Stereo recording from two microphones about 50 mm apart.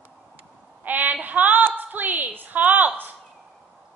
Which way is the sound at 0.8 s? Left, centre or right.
Right.